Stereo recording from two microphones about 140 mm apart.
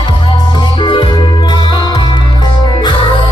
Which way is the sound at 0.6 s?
35° left (ahead or behind).